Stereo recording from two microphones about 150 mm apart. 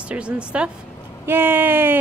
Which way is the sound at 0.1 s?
5° right (ahead or behind).